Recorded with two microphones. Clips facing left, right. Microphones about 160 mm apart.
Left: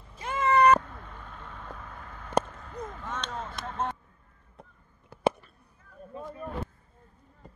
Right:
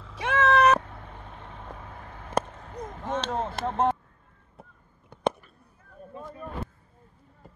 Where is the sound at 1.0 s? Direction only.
50° right (ahead or behind).